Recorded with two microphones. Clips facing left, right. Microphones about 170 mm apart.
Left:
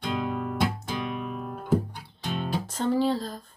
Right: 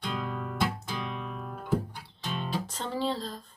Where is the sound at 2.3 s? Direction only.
50° left (ahead or behind).